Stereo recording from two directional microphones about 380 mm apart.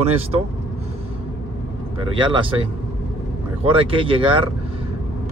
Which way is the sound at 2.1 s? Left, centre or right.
Centre.